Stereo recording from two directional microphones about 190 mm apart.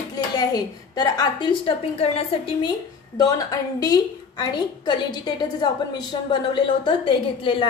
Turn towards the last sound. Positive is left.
turn(degrees=25)  # may be behind; listen again after turning